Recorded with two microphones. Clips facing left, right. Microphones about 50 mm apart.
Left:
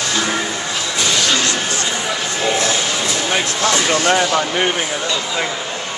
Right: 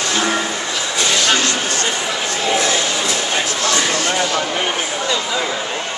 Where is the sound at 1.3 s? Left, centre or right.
Right.